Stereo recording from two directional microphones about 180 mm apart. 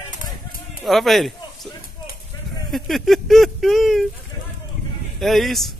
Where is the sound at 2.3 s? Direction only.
20° left (ahead or behind).